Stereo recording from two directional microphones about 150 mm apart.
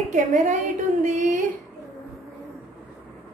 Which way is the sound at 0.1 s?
55° right (ahead or behind).